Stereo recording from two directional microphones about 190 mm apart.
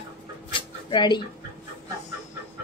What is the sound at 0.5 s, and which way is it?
Dog, 25° left (ahead or behind).